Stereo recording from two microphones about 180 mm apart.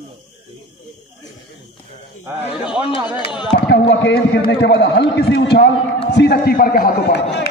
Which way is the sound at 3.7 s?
65° left (ahead or behind).